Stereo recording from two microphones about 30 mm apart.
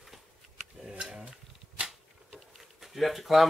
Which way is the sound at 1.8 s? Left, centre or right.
Right.